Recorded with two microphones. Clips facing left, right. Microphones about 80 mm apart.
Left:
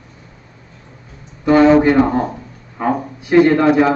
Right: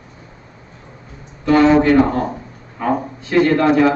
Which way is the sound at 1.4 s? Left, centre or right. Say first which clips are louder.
Left 2 dB; centre.